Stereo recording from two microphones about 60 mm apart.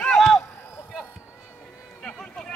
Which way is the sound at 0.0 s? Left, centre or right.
Centre.